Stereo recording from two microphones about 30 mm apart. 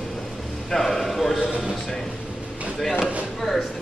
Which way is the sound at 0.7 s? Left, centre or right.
Centre.